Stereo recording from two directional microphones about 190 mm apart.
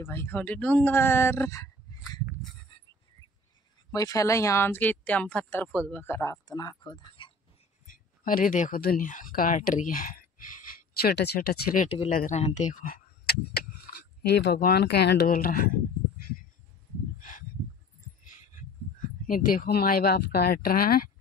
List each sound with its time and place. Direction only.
0.0 s speech: 10° left (ahead or behind)
2.7 s a sound: 30° left (ahead or behind)
3.9 s speech: 15° left (ahead or behind)
7.8 s speech: 45° left (ahead or behind)
17.2 s a sound: 45° left (ahead or behind)
19.2 s speech: 45° left (ahead or behind)